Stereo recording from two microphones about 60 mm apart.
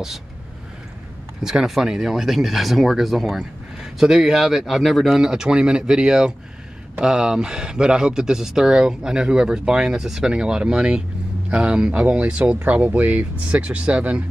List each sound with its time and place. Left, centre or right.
1.4 s speech: centre